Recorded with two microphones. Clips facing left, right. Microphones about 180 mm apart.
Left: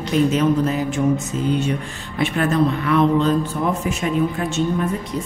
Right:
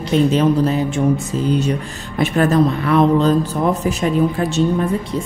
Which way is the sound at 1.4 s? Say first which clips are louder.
Right 2 dB; 40° right (ahead or behind).